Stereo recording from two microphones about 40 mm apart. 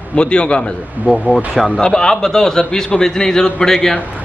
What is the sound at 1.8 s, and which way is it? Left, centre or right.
A man's voice, centre.